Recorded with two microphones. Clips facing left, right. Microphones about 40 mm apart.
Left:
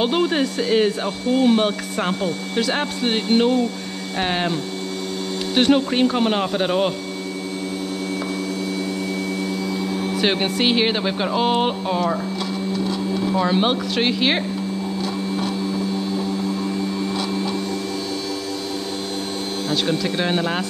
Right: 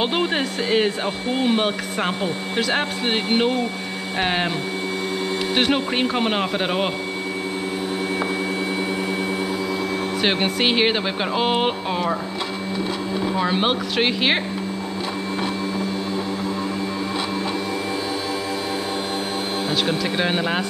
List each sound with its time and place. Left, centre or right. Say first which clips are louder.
0.0 s speech: left 2 dB; centre
5.5 s speech: left 5 dB; centre
10.2 s speech: left 1 dB; centre
19.7 s speech: left 2 dB; centre